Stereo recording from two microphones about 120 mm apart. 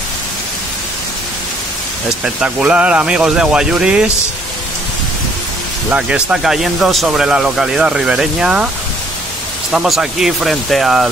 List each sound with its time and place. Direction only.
2.2 s speech: 10° right (ahead or behind)
5.9 s speech: 10° right (ahead or behind)
9.7 s speech: 5° right (ahead or behind)